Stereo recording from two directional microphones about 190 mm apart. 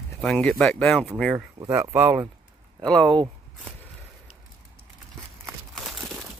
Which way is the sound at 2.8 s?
5° left (ahead or behind).